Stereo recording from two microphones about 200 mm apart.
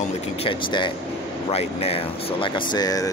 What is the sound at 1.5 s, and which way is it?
Speech, 30° left (ahead or behind).